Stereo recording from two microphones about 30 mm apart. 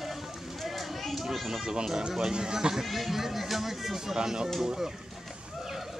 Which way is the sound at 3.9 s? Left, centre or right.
Centre.